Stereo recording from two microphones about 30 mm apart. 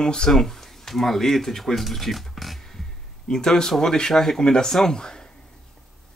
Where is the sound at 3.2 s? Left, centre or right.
Left.